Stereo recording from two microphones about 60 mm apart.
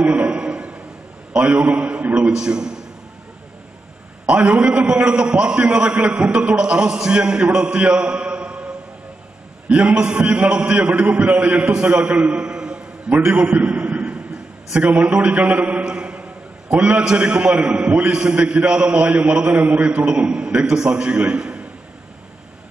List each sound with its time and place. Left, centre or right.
0.0 s a sound: centre
1.3 s a man's voice: centre
4.3 s a man's voice: centre
9.7 s a man's voice: centre
15.8 s a sound: centre
16.7 s a man's voice: centre